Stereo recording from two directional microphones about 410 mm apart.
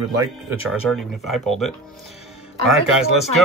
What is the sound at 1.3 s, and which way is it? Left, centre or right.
Speech, centre.